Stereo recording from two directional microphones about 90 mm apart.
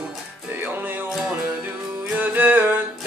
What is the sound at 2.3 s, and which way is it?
Music, 20° right (ahead or behind).